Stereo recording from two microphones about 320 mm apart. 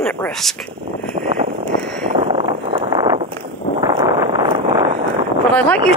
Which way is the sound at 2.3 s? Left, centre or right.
Centre.